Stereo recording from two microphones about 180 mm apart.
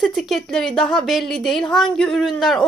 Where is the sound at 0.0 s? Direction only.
Centre (ahead or behind).